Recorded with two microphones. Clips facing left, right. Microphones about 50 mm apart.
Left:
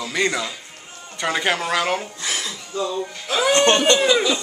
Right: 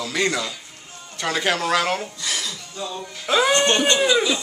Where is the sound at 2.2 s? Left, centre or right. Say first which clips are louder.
Left 1 dB; left.